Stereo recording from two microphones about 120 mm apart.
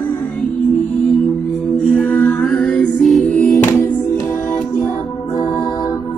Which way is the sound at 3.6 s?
20° left (ahead or behind).